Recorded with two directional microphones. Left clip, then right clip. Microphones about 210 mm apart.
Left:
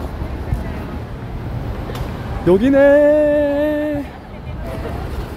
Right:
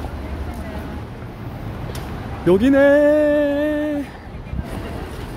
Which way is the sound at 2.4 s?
10° right (ahead or behind).